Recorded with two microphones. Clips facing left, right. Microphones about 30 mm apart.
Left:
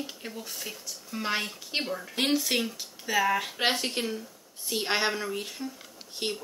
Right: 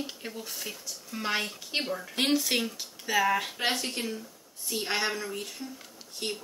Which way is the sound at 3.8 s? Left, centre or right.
Left.